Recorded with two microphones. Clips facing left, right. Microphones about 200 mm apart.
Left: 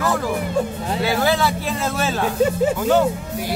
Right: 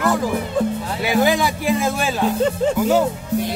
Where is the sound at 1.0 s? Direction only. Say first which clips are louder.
Right 2 dB; 15° right (ahead or behind).